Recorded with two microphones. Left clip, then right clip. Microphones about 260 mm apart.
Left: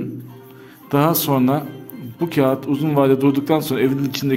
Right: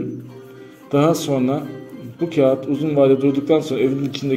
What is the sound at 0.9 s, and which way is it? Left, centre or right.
A man's voice, left.